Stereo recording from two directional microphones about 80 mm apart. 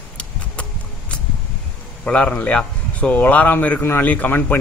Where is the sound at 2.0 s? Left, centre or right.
Centre.